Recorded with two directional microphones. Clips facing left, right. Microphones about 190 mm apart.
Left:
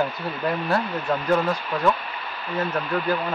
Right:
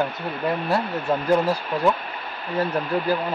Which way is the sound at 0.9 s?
50° right (ahead or behind).